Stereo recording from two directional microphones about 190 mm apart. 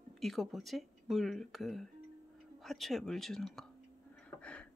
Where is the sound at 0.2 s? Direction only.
Centre (ahead or behind).